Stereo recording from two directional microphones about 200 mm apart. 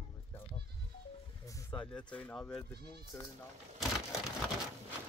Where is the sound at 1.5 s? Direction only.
10° left (ahead or behind).